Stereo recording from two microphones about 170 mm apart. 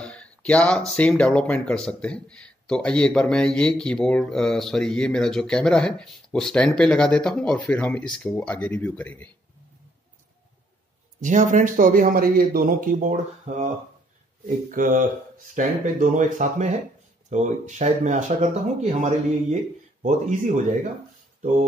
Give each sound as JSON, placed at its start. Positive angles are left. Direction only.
{"t": 0.0, "sound": "speech", "side_deg": 5}
{"t": 11.1, "sound": "speech", "side_deg": -50}